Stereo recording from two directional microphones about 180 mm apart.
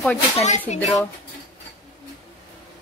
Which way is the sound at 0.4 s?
40° left (ahead or behind).